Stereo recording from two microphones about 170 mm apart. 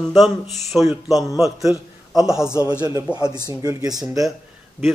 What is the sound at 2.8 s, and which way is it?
A man's voice, 25° right (ahead or behind).